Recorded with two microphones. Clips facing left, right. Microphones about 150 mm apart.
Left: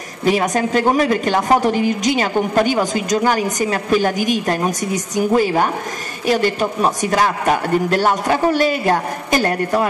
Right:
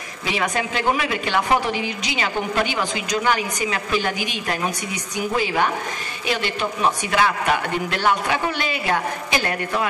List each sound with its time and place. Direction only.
0.2 s a woman's voice: 45° left (ahead or behind)